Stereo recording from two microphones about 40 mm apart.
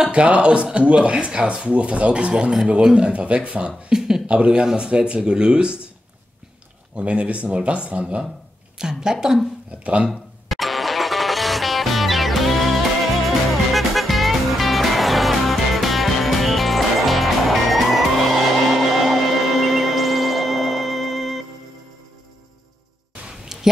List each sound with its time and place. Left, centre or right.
0.1 s speech: right
3.9 s a sound: centre
4.3 s speech: right
7.0 s speech: right
8.7 s a woman's voice: centre
10.5 s music: centre
23.5 s a sound: centre